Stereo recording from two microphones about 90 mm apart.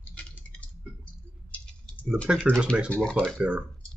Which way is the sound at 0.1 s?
15° left (ahead or behind).